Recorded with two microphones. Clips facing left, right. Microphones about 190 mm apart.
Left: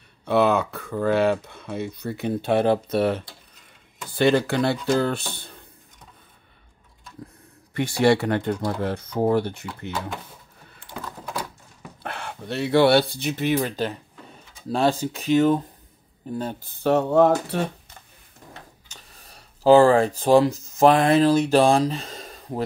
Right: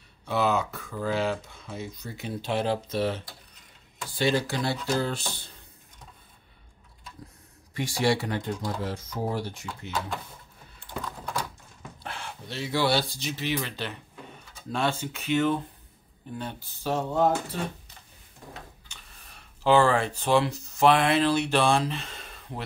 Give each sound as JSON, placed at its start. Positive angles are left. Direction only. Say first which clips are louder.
{"t": 0.2, "sound": "speech", "louder": "left 6 dB", "side_deg": 60}
{"t": 8.0, "sound": "speech", "louder": "left 7 dB", "side_deg": 60}
{"t": 11.1, "sound": "a sound", "louder": "left 2 dB", "side_deg": 5}
{"t": 12.0, "sound": "speech", "louder": "left 6 dB", "side_deg": 60}
{"t": 13.6, "sound": "speech", "louder": "left 8 dB", "side_deg": 40}
{"t": 16.7, "sound": "speech", "louder": "left 9 dB", "side_deg": 65}
{"t": 18.9, "sound": "speech", "louder": "left 3 dB", "side_deg": 40}